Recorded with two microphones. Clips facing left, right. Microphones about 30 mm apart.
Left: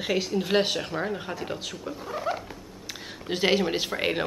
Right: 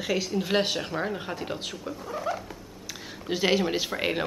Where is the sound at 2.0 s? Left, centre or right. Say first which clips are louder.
Left 2 dB; centre.